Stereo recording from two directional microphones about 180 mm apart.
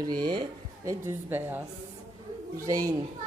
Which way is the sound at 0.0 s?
20° right (ahead or behind).